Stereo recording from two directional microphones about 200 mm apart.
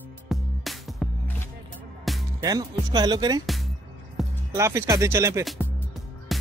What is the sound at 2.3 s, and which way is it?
Speech, 20° right (ahead or behind).